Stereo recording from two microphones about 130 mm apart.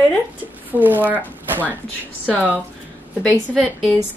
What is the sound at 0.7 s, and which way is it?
Speech, 15° right (ahead or behind).